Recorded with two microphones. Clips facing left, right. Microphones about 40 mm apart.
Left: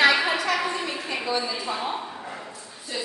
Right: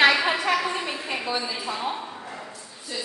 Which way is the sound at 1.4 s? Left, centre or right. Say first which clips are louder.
Left 1 dB; centre.